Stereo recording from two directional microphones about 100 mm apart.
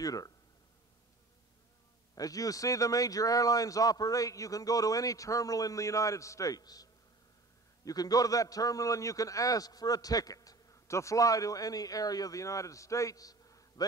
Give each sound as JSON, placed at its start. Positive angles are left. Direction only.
{"t": 0.0, "sound": "a man's voice", "side_deg": 35}
{"t": 2.1, "sound": "a man's voice", "side_deg": 35}